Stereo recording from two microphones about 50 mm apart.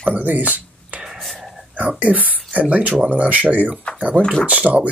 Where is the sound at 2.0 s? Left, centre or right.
Right.